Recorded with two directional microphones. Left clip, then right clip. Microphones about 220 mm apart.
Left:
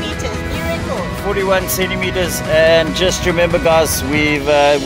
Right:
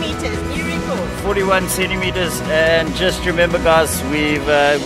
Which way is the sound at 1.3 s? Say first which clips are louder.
Left 1 dB; centre (ahead or behind).